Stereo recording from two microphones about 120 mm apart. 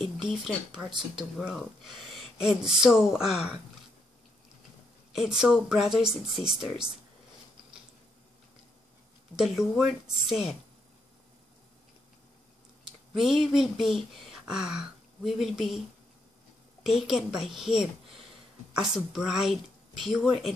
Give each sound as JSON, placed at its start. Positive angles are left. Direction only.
{"t": 0.0, "sound": "a sound", "side_deg": 0}
{"t": 0.8, "sound": "speech", "side_deg": 0}
{"t": 5.1, "sound": "speech", "side_deg": -5}
{"t": 9.4, "sound": "speech", "side_deg": -5}
{"t": 13.1, "sound": "speech", "side_deg": 0}
{"t": 16.8, "sound": "speech", "side_deg": 0}